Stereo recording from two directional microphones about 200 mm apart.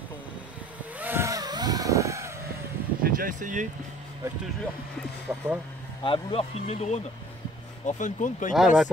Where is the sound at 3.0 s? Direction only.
45° right (ahead or behind).